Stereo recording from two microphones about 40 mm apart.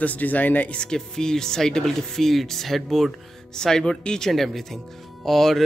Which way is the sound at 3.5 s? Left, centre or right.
Centre.